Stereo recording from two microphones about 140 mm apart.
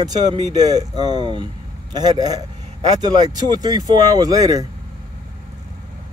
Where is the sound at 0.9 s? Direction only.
50° left (ahead or behind).